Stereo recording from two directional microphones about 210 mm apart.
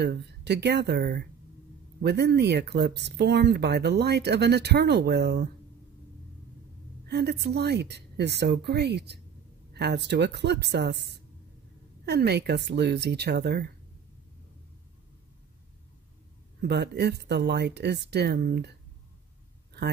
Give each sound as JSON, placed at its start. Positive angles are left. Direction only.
{"t": 0.0, "sound": "speech", "side_deg": -55}
{"t": 7.1, "sound": "speech", "side_deg": -50}
{"t": 16.6, "sound": "speech", "side_deg": -50}